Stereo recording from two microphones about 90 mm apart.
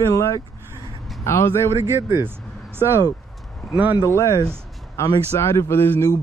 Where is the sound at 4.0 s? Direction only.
35° left (ahead or behind).